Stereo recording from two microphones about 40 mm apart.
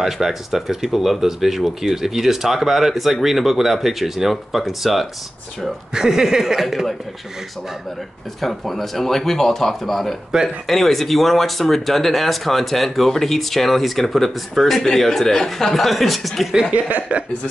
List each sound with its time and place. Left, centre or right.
0.0 s speech: centre
5.9 s speech: centre
8.4 s speech: centre
10.3 s speech: centre
10.7 s speech: centre
17.1 s speech: right